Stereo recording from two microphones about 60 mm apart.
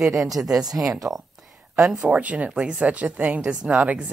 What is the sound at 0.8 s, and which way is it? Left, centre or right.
Speech, right.